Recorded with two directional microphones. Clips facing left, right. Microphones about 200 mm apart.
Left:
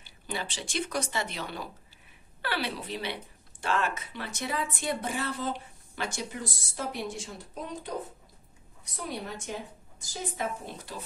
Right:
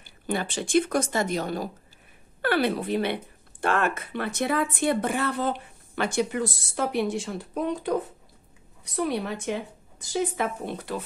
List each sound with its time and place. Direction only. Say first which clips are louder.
0.0 s speech: right 7 dB; 50° right (ahead or behind)
8.9 s speech: right 9 dB; 70° right (ahead or behind)